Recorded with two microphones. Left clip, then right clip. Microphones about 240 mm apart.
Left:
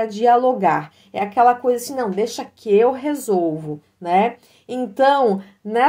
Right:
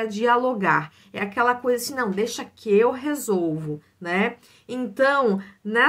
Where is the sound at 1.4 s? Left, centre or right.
Centre.